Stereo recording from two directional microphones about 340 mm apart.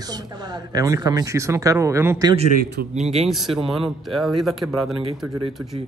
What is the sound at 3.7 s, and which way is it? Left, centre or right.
Speech, centre.